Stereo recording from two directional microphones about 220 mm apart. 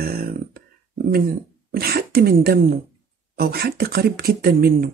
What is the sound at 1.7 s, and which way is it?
Speech, 45° right (ahead or behind).